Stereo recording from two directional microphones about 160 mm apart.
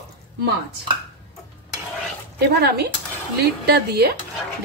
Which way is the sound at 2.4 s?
85° right.